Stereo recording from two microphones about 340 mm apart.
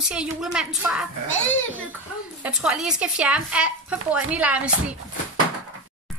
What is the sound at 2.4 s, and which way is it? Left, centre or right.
Speech, centre.